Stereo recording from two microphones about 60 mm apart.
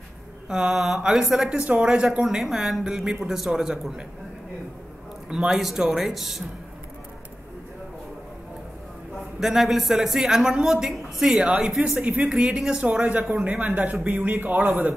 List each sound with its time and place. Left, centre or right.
0.5 s a woman's voice: centre
1.6 s a woman's voice: centre
2.2 s a woman's voice: centre
5.3 s speech: centre
9.4 s a woman's voice: centre
12.0 s speech: right